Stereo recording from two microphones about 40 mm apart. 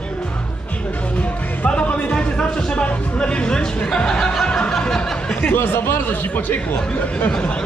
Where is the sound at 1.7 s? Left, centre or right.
Left.